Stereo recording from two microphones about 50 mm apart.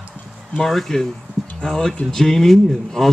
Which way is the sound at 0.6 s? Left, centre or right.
Centre.